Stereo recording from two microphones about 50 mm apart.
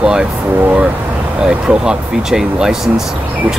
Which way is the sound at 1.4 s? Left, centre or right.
Centre.